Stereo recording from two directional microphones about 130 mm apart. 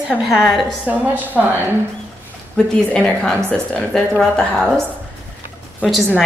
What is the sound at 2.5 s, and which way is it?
A woman's voice, 5° left (ahead or behind).